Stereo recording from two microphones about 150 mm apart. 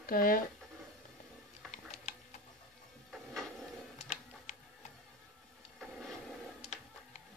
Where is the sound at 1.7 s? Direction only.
50° left (ahead or behind).